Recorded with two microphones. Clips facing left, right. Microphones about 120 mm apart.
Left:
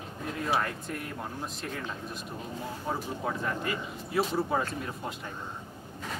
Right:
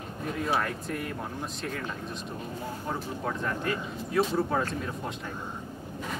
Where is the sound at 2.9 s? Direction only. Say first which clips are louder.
Left 1 dB; 5° left (ahead or behind).